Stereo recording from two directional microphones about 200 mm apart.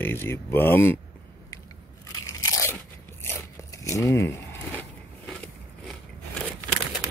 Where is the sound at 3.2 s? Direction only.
15° left (ahead or behind).